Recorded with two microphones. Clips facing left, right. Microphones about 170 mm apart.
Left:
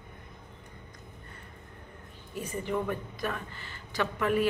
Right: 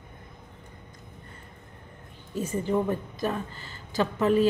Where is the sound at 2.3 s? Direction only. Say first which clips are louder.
Right 6 dB; 25° right (ahead or behind).